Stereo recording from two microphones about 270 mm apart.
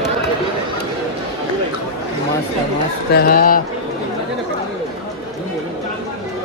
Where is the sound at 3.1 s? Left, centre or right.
Left.